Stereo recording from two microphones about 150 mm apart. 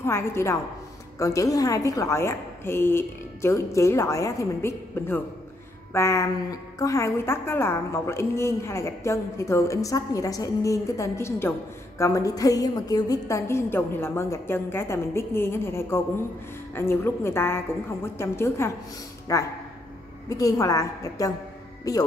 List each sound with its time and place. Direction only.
0.0 s a woman's voice: 15° left (ahead or behind)